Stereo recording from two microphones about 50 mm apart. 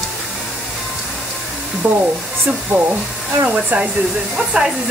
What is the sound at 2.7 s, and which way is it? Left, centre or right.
Speech, right.